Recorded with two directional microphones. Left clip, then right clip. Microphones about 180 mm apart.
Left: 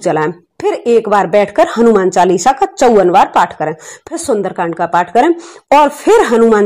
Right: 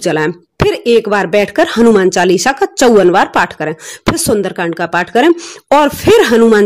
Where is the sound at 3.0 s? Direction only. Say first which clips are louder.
Left 1 dB; 40° right (ahead or behind).